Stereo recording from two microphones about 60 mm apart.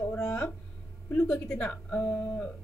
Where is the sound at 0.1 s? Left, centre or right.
Left.